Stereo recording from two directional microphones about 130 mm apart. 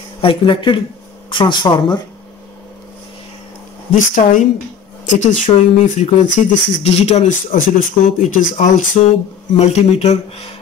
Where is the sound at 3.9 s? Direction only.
75° left (ahead or behind).